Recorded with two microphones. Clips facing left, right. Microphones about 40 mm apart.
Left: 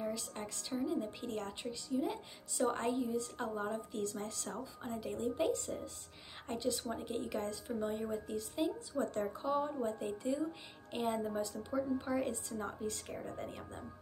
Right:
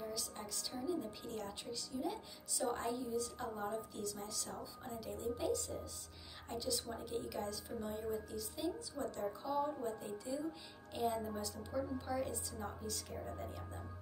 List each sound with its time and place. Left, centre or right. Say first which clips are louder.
0.1 s a woman's voice: left 3 dB; left
2.6 s a woman's voice: left 5 dB; left
12.3 s a woman's voice: left 4 dB; left